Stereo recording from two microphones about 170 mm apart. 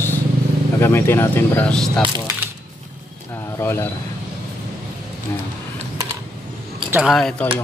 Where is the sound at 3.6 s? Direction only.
15° left (ahead or behind).